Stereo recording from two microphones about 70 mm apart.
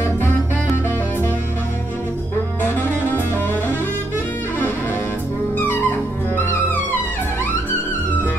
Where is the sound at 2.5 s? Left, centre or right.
Left.